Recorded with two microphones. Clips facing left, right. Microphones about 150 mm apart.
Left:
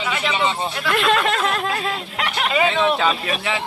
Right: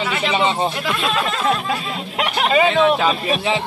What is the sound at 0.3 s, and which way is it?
Speech, 25° right (ahead or behind).